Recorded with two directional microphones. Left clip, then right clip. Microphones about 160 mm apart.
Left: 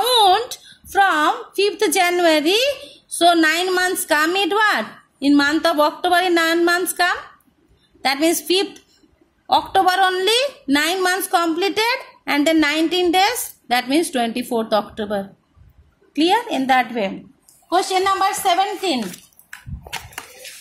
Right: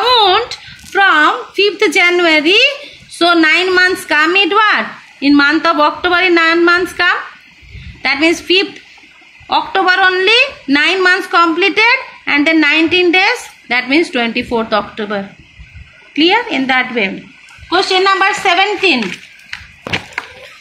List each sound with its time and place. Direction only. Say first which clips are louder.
0.0 s a woman's voice: right 5 dB; 80° left
16.1 s a woman's voice: right 6 dB; 85° left
18.4 s a woman's voice: right 7 dB; 80° left